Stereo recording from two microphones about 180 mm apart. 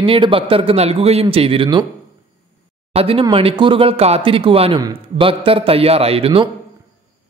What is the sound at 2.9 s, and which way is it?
Speech, 35° right (ahead or behind).